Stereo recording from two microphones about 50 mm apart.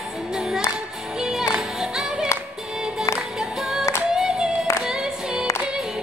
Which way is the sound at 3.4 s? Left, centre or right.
Centre.